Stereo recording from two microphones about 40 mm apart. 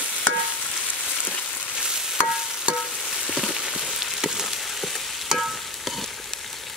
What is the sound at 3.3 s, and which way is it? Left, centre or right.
Frying, centre.